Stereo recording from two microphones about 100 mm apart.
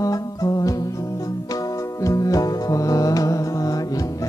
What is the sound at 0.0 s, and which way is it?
Music, 35° left (ahead or behind).